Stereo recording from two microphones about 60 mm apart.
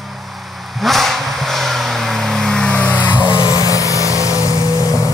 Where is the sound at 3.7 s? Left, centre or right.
Left.